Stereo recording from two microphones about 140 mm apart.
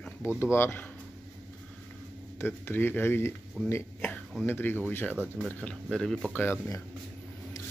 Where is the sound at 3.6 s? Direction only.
15° left (ahead or behind).